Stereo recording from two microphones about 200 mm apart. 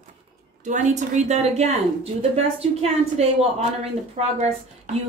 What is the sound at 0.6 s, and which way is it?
A woman's voice, 35° right (ahead or behind).